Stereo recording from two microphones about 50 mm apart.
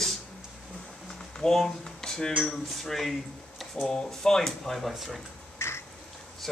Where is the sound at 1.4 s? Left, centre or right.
Centre.